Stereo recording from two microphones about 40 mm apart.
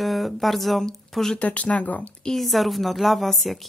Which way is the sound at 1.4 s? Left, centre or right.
Left.